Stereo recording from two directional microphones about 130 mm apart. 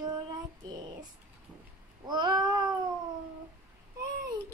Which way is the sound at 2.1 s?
35° right (ahead or behind).